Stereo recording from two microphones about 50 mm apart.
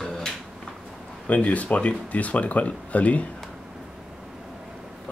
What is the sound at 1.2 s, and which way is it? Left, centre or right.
Speech, left.